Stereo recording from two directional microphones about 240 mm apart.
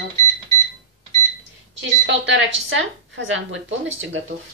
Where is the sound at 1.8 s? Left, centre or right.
Right.